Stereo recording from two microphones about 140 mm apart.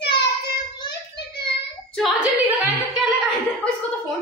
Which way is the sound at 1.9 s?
Centre (ahead or behind).